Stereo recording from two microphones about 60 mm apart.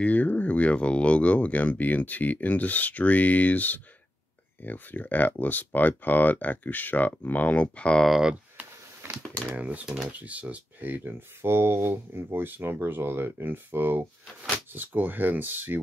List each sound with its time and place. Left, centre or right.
0.0 s speech: left
9.5 s speech: right